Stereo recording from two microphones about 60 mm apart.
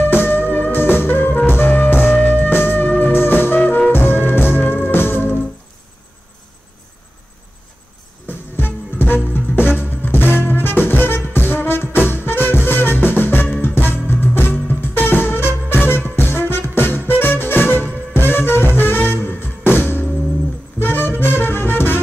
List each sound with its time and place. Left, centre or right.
0.0 s music: left
8.3 s music: left